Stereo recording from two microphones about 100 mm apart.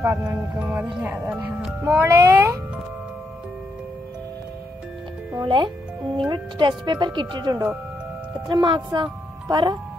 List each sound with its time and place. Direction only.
0.0 s speech: 25° right (ahead or behind)
2.0 s speech: 30° right (ahead or behind)
5.4 s speech: 50° right (ahead or behind)